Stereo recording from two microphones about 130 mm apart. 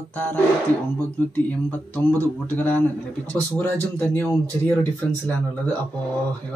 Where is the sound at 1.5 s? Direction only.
10° left (ahead or behind).